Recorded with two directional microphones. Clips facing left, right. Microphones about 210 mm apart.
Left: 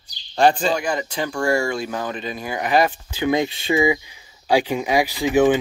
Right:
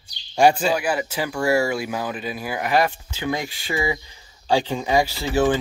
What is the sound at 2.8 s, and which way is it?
Speech, 20° left (ahead or behind).